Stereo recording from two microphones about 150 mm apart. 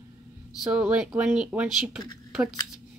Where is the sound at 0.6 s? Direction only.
5° right (ahead or behind).